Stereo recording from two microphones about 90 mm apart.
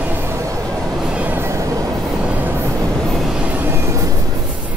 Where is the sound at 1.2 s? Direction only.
20° right (ahead or behind).